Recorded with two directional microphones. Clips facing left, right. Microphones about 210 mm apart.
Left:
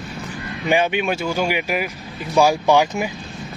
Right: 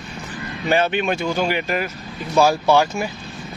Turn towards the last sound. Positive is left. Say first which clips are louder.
# even
turn(degrees=15)  # may be behind; listen again after turning